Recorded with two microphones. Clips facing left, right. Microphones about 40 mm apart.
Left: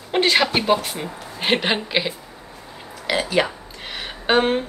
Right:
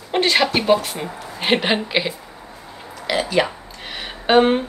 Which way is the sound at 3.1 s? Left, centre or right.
Centre.